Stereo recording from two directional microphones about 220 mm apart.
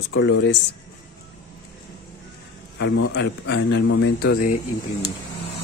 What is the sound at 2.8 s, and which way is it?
A man's voice, 60° left (ahead or behind).